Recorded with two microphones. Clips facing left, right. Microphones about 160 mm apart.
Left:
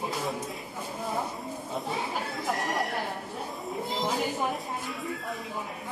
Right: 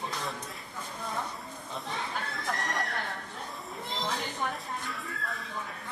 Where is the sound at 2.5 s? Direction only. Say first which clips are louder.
Left 4 dB; 20° left (ahead or behind).